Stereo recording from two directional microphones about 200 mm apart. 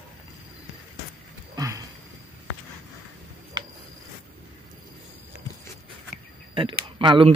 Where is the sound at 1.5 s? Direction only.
15° right (ahead or behind).